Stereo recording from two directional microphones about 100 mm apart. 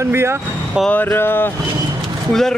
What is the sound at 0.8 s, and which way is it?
Speech, 20° left (ahead or behind).